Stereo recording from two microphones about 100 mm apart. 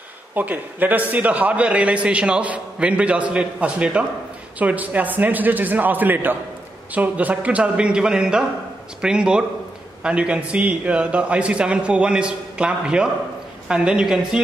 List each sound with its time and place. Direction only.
0.3 s a man's voice: 15° right (ahead or behind)